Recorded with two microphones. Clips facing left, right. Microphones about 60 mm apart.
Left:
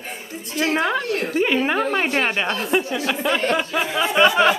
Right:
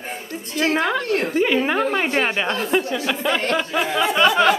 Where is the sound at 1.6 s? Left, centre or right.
Centre.